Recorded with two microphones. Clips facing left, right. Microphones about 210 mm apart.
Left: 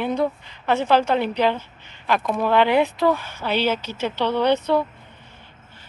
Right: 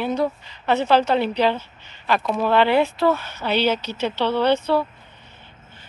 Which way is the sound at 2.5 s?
15° left (ahead or behind).